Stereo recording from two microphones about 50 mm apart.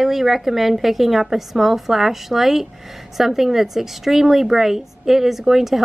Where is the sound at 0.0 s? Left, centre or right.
Centre.